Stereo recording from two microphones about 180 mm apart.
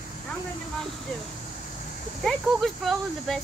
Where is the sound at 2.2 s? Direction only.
Centre (ahead or behind).